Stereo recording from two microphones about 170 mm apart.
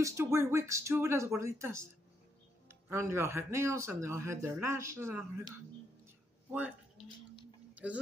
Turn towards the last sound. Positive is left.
turn(degrees=-10)  # may be behind; listen again after turning